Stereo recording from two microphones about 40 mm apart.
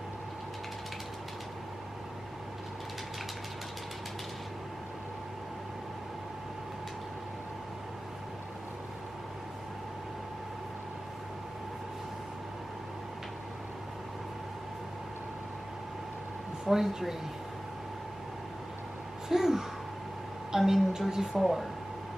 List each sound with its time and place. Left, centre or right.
16.6 s a woman's voice: centre
19.2 s a sound: centre
20.5 s a woman's voice: centre
21.4 s speech: centre